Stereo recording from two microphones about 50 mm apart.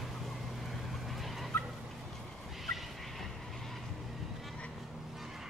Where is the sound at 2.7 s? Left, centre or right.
Centre.